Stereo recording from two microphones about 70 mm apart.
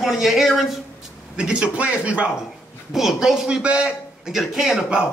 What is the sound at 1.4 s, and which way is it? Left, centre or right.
Speech, centre.